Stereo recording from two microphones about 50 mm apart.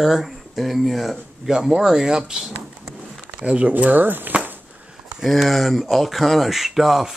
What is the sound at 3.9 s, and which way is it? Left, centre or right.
Speech, right.